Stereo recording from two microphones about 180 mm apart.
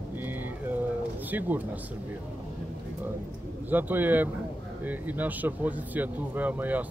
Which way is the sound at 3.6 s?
10° right (ahead or behind).